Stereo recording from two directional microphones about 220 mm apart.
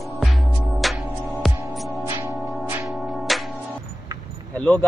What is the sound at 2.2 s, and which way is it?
Music, 10° right (ahead or behind).